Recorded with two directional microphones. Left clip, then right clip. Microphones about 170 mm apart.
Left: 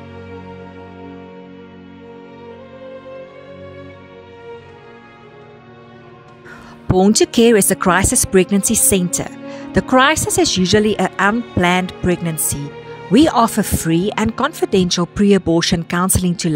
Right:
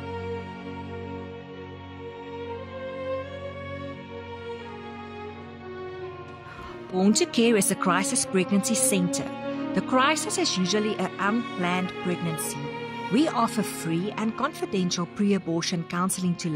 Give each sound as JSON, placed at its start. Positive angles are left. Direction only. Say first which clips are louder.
{"t": 6.9, "sound": "speech", "louder": "left 11 dB", "side_deg": 40}